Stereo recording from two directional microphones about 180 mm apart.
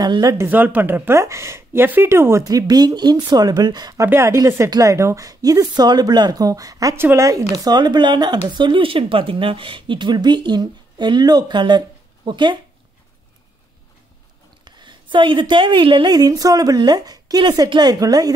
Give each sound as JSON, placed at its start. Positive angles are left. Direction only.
{"t": 0.0, "sound": "a woman's voice", "side_deg": -20}
{"t": 14.6, "sound": "a woman's voice", "side_deg": -25}